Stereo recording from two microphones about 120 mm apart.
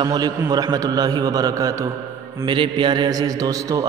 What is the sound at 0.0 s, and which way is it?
A man's voice, 35° right (ahead or behind).